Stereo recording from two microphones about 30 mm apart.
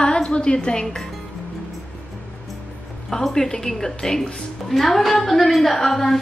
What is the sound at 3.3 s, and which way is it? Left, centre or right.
A woman's voice, centre.